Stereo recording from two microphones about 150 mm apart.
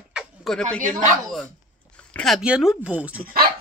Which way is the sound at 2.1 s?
Centre (ahead or behind).